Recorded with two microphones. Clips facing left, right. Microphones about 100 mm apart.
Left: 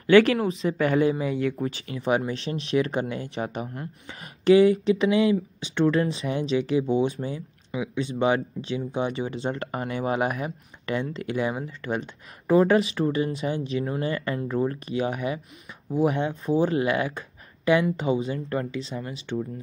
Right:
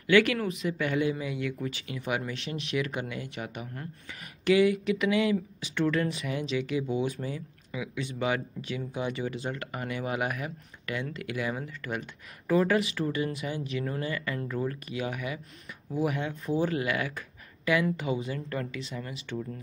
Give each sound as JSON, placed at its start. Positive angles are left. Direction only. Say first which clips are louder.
{"t": 0.0, "sound": "speech", "louder": "left 6 dB", "side_deg": 35}